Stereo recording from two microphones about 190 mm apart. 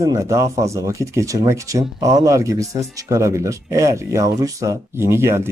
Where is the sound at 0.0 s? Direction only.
20° right (ahead or behind).